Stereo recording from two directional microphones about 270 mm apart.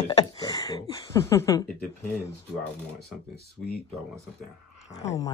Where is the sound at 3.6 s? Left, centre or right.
Centre.